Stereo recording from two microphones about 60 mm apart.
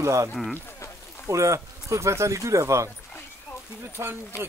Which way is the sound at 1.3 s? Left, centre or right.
Right.